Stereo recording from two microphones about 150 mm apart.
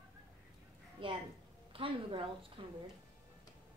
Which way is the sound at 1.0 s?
35° right (ahead or behind).